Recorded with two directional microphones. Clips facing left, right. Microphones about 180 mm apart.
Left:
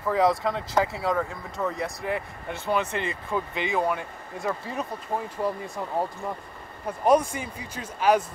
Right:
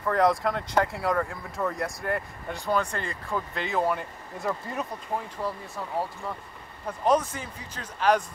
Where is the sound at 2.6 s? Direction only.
20° left (ahead or behind); by 4.9 s centre (ahead or behind).